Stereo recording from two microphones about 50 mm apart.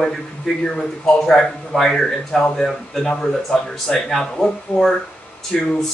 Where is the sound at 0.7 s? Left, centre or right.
Centre.